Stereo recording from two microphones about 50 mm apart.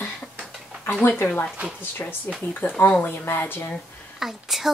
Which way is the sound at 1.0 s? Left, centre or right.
Left.